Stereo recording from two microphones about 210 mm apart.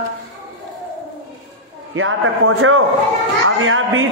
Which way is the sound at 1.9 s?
70° right (ahead or behind).